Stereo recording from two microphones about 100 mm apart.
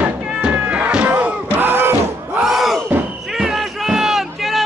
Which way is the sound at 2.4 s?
Centre (ahead or behind).